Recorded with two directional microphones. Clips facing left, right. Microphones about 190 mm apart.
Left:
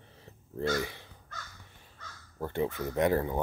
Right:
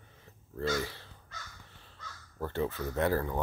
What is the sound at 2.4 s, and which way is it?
Speech, 15° left (ahead or behind).